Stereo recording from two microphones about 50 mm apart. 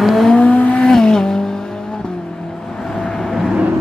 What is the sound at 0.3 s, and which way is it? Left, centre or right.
Vehicle, left.